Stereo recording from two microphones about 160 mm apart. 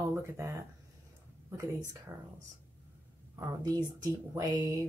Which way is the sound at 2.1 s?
15° right (ahead or behind).